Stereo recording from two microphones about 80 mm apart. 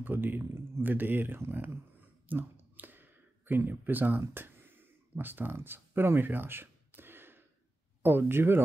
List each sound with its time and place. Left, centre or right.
0.0 s speech: right